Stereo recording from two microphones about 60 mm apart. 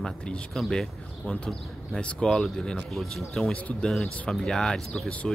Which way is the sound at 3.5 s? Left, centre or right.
Centre.